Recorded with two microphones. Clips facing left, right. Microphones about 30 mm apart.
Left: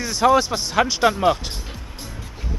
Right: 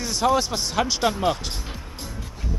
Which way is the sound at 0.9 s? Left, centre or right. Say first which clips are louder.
Left 5 dB; centre.